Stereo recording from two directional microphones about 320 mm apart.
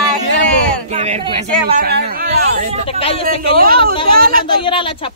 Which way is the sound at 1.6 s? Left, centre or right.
Right.